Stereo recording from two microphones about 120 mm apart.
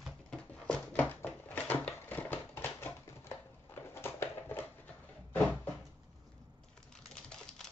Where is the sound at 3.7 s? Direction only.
20° left (ahead or behind).